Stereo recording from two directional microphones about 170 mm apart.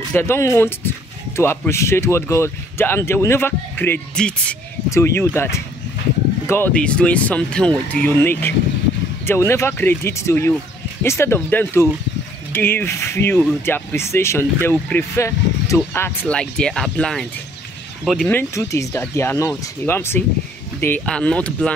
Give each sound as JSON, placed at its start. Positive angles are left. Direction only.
{"t": 0.1, "sound": "speech", "side_deg": 15}
{"t": 18.3, "sound": "speech", "side_deg": 15}